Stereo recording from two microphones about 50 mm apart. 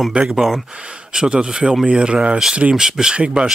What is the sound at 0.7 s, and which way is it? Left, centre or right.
Speech, centre.